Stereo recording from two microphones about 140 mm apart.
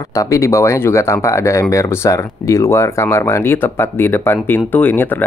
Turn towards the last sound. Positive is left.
turn(degrees=15)  # may be behind; listen again after turning